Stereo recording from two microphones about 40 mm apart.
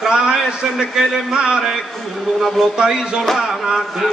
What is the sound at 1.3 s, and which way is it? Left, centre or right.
Speech, right.